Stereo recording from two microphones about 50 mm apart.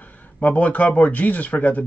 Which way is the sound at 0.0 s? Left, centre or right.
Left.